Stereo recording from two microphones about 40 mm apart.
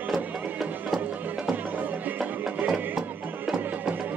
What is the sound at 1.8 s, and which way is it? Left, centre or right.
Music, right.